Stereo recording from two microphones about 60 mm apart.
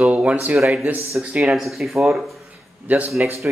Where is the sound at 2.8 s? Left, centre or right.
Right.